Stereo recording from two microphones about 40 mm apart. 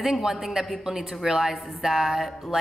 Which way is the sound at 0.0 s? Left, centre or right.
Centre.